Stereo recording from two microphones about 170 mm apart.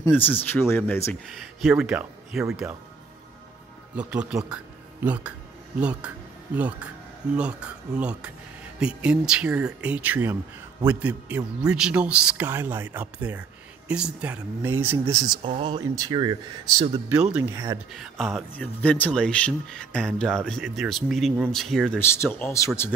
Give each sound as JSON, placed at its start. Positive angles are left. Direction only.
{"t": 0.0, "sound": "speech", "side_deg": 10}
{"t": 1.3, "sound": "speech", "side_deg": 0}
{"t": 4.1, "sound": "a man's voice", "side_deg": -5}
{"t": 15.4, "sound": "speech", "side_deg": -35}
{"t": 15.9, "sound": "speech", "side_deg": -25}
{"t": 17.1, "sound": "speech", "side_deg": -5}
{"t": 17.5, "sound": "a man's voice", "side_deg": -20}
{"t": 17.9, "sound": "speech", "side_deg": 0}
{"t": 18.5, "sound": "speech", "side_deg": 10}
{"t": 22.0, "sound": "speech", "side_deg": 15}